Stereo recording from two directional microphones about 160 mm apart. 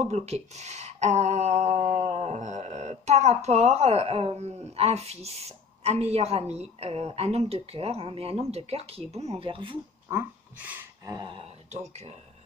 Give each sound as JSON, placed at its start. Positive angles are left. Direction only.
{"t": 0.0, "sound": "speech", "side_deg": -45}
{"t": 10.0, "sound": "speech", "side_deg": -15}
{"t": 11.1, "sound": "speech", "side_deg": -30}